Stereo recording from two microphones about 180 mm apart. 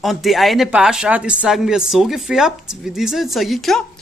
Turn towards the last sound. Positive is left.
turn(degrees=0)  # may be behind; listen again after turning